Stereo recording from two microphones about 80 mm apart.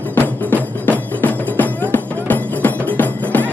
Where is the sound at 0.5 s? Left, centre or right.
Left.